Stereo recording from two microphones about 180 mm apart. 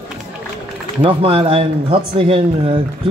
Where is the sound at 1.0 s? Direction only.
30° right (ahead or behind).